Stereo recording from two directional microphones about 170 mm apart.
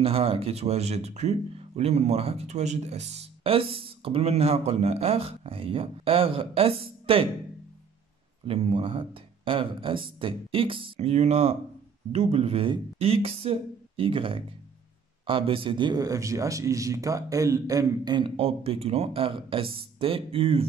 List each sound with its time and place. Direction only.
0.0 s speech: 35° right (ahead or behind)
8.5 s speech: 35° right (ahead or behind)